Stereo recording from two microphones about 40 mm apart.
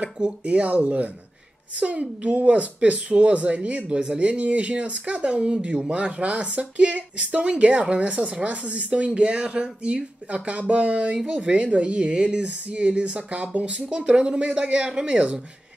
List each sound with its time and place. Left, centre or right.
0.5 s speech: right
3.9 s speech: right
4.2 s speech: right